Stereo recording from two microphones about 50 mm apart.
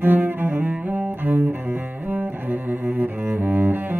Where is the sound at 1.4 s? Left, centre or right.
Right.